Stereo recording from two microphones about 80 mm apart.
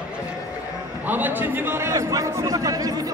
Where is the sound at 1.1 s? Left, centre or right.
Right.